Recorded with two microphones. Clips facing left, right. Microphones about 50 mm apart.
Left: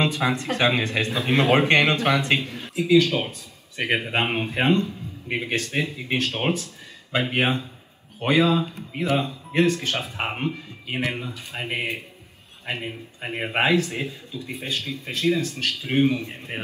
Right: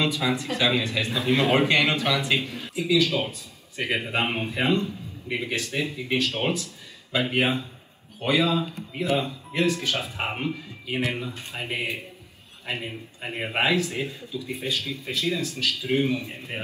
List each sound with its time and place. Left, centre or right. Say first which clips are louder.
0.0 s a man's voice: left 2 dB; left
13.6 s a man's voice: left 2 dB; left